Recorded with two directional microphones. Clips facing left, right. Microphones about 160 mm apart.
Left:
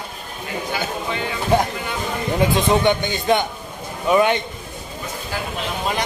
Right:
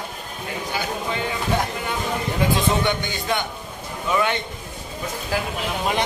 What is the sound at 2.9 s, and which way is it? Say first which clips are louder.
Speech: left 6 dB; 20° left (ahead or behind).